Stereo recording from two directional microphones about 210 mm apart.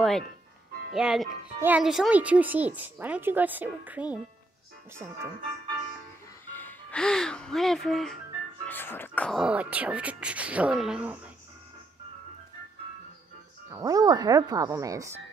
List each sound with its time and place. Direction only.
0.9 s speech: centre (ahead or behind)
6.4 s speech: 10° left (ahead or behind)
13.7 s speech: 15° right (ahead or behind)